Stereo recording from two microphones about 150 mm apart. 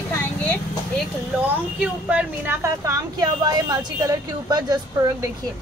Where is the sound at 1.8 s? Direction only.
10° right (ahead or behind).